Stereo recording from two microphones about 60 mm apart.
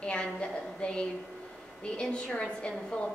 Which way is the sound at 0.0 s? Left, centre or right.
Centre.